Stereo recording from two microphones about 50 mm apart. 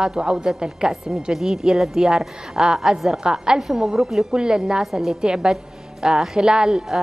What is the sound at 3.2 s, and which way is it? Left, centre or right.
A woman's voice, centre.